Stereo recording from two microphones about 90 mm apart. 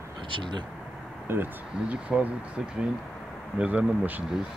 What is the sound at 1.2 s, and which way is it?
Speech, 25° right (ahead or behind).